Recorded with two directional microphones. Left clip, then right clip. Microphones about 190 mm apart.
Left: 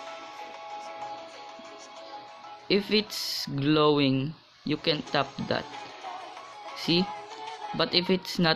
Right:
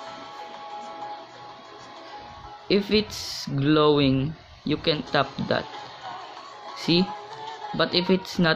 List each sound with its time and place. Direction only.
0.7 s music: 35° left (ahead or behind)
2.7 s speech: 20° left (ahead or behind)
5.8 s music: 35° left (ahead or behind)
6.7 s speech: 15° left (ahead or behind)
7.1 s music: 35° left (ahead or behind)
7.7 s speech: 20° left (ahead or behind)